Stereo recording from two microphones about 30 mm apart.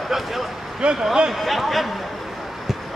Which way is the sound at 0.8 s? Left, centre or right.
Right.